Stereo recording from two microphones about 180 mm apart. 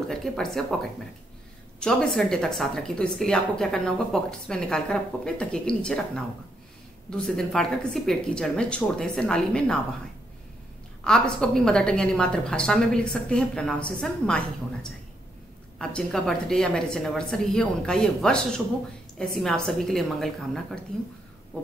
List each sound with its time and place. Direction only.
0.1 s a woman's voice: centre (ahead or behind)
1.8 s a woman's voice: 5° left (ahead or behind)
11.1 s a woman's voice: 5° left (ahead or behind)